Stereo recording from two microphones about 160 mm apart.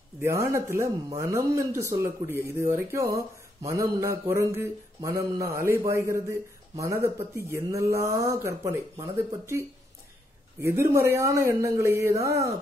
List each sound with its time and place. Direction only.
0.2 s speech: 15° right (ahead or behind)